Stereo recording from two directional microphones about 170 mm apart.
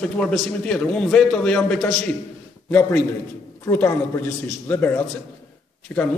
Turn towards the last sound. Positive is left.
turn(degrees=15)  # may be behind; listen again after turning